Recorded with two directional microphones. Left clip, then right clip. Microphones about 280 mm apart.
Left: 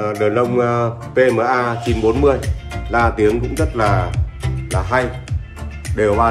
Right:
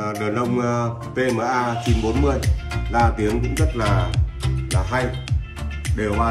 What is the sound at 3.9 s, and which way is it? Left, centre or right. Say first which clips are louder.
Music: left 5 dB; centre.